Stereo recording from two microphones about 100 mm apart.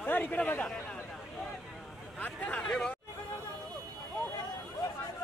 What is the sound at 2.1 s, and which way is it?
Speech, 15° left (ahead or behind).